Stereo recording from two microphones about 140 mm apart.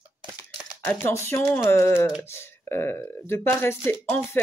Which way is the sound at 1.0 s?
20° left (ahead or behind).